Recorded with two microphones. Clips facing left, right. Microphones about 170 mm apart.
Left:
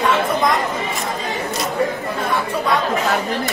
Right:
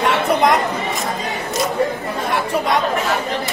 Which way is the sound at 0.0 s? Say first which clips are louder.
Right 2 dB; 70° right (ahead or behind).